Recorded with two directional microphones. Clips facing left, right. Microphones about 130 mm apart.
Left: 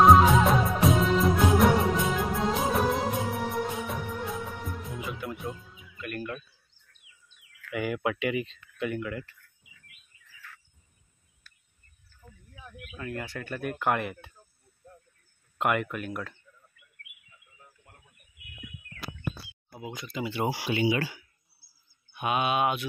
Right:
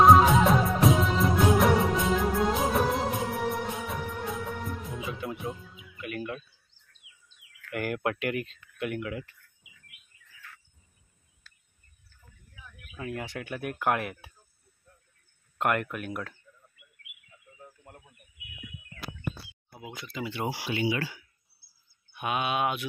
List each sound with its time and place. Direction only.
0.0 s music of bollywood: centre (ahead or behind)
7.7 s speech: centre (ahead or behind)
11.4 s insect: 90° right
12.9 s speech: 20° right (ahead or behind)
15.5 s speech: centre (ahead or behind)
19.7 s speech: centre (ahead or behind); by 21.2 s 20° left (ahead or behind)
22.1 s speech: centre (ahead or behind)